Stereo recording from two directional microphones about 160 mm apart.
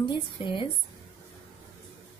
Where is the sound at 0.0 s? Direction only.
30° left (ahead or behind).